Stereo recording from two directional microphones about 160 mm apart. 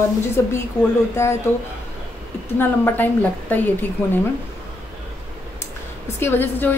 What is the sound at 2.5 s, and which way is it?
A woman's voice, 10° left (ahead or behind).